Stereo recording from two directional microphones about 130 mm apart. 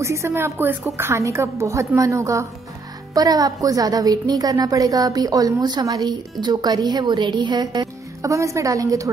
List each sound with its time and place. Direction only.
0.0 s a woman's voice: 20° right (ahead or behind)